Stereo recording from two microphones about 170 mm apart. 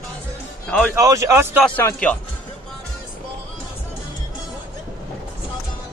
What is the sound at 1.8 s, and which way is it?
Speech, 10° left (ahead or behind).